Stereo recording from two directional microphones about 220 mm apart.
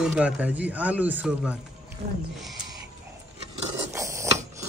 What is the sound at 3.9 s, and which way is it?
Ratchet, 15° right (ahead or behind).